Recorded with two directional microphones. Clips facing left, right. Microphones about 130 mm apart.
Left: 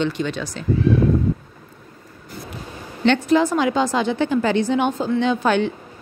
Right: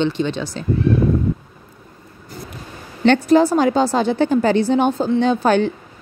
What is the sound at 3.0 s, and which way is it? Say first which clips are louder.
Speech: right 4 dB; 40° right (ahead or behind).